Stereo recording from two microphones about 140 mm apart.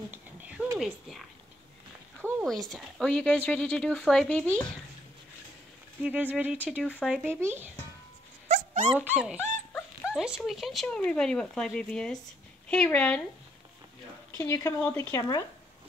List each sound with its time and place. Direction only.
0.1 s a sound: 10° right (ahead or behind)
0.7 s speech: centre (ahead or behind)
2.2 s a sound: 15° right (ahead or behind)
2.7 s speech: 5° left (ahead or behind)
6.0 s speech: 10° right (ahead or behind)
7.0 s speech: centre (ahead or behind)
7.3 s speech: 15° right (ahead or behind)
8.5 s dog: 50° right (ahead or behind)
8.9 s speech: 10° right (ahead or behind); by 13.2 s 10° left (ahead or behind)
14.3 s speech: 20° left (ahead or behind)